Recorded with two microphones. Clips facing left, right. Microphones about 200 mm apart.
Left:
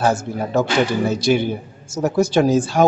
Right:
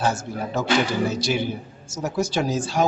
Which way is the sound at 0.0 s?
55° left (ahead or behind).